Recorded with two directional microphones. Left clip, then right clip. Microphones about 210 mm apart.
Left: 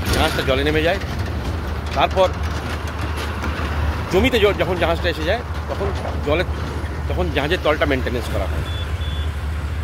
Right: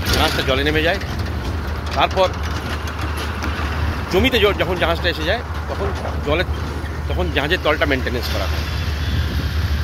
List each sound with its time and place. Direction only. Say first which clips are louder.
0.2 s speech: even; 5° left (ahead or behind)
2.0 s speech: even; 5° left (ahead or behind)
4.1 s speech: even; 5° left (ahead or behind)
7.2 s speech: right 1 dB; 5° left (ahead or behind)